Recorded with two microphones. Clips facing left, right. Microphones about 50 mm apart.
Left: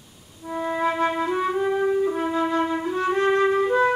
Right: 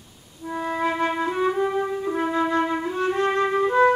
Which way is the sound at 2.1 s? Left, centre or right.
Centre.